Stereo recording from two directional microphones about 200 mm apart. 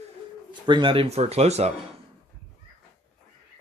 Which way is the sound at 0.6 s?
25° right (ahead or behind).